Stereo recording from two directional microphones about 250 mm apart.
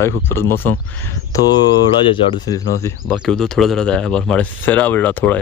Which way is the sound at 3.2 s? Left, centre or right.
Centre.